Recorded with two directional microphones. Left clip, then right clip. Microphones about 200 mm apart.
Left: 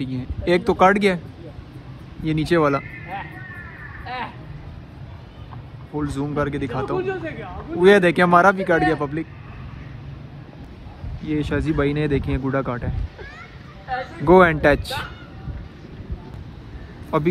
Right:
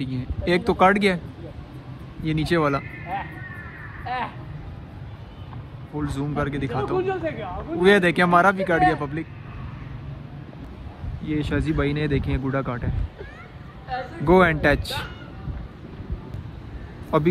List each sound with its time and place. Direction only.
0.0 s speech: centre (ahead or behind)
2.2 s speech: centre (ahead or behind)
4.0 s a sound: 40° right (ahead or behind)
5.9 s speech: centre (ahead or behind)
7.0 s a man's voice: 35° right (ahead or behind)
7.8 s speech: centre (ahead or behind)
11.2 s speech: centre (ahead or behind)
14.2 s speech: centre (ahead or behind)
17.1 s speech: 5° right (ahead or behind)